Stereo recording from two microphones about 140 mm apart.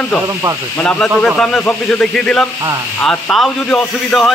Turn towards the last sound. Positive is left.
turn(degrees=5)  # may be behind; listen again after turning